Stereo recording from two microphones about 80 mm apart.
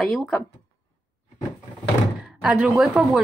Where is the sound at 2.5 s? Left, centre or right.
Centre.